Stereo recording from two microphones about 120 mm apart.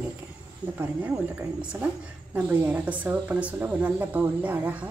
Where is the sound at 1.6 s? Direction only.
10° right (ahead or behind).